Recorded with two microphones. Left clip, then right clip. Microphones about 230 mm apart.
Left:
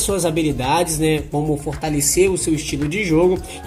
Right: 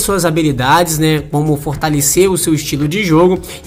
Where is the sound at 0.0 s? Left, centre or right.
Right.